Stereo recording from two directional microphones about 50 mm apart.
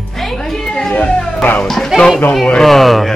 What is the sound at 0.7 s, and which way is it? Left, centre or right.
A man's voice, centre.